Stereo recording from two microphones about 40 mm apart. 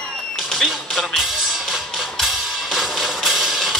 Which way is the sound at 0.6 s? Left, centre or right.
Centre.